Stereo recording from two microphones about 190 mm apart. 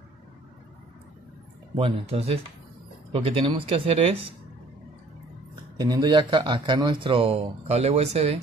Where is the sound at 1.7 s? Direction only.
30° right (ahead or behind).